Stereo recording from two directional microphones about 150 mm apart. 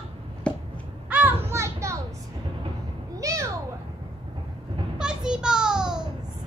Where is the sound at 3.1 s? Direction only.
20° right (ahead or behind).